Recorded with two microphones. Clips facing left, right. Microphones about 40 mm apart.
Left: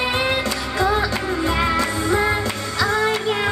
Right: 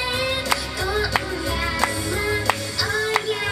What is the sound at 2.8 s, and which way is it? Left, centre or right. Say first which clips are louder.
Music: left 4 dB; left.